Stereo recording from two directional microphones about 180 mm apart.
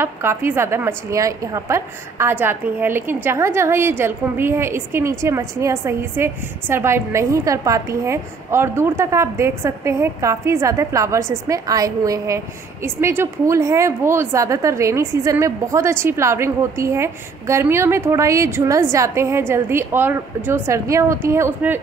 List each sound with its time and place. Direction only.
0.0 s a woman's voice: 15° right (ahead or behind)